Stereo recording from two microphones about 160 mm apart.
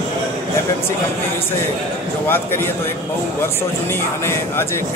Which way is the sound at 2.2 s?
15° left (ahead or behind).